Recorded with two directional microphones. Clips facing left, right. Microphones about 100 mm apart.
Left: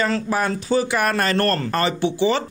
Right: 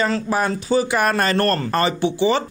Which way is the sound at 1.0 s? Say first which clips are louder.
Right 1 dB; 25° right (ahead or behind).